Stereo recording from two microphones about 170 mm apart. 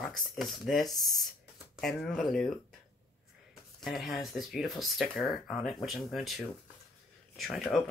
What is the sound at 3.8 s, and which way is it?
Speech, centre (ahead or behind).